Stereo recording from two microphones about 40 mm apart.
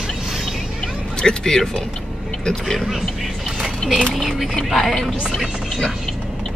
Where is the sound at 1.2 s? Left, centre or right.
Centre.